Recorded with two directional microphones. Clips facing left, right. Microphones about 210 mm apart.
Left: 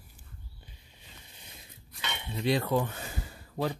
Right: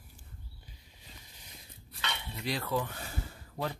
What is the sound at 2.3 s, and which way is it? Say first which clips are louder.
Speech: left 7 dB; 25° left (ahead or behind).